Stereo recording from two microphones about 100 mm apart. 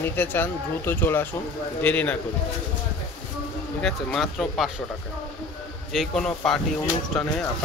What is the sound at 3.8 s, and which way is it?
Speech, 5° left (ahead or behind).